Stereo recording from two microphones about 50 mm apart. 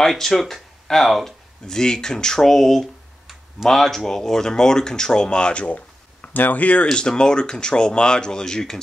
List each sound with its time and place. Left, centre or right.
0.0 s speech: centre
1.8 s speech: centre
6.9 s speech: centre